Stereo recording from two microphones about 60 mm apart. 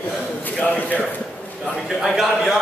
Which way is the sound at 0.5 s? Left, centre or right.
Left.